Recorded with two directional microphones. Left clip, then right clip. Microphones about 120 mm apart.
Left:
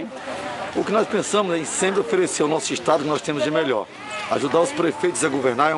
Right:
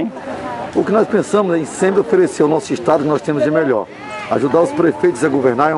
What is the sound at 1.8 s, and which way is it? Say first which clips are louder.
Speech: right 7 dB; 30° left (ahead or behind).